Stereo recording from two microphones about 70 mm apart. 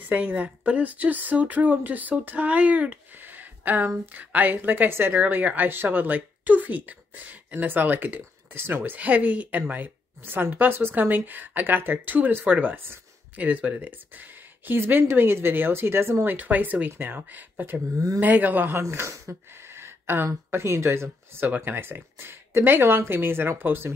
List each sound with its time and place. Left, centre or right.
0.1 s speech: centre; by 16.2 s right
16.3 s speech: right
17.9 s speech: right
18.2 s speech: right
18.8 s speech: right